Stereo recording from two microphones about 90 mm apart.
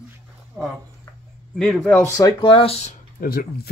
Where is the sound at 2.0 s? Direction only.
40° left (ahead or behind).